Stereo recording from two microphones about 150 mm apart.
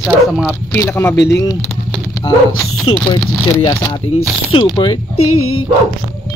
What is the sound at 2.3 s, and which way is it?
Speech, 35° left (ahead or behind).